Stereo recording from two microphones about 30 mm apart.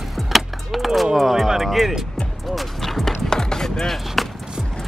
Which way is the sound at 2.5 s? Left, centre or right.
Centre.